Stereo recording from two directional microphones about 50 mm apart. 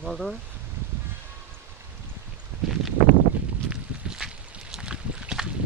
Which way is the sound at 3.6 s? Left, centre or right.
Centre.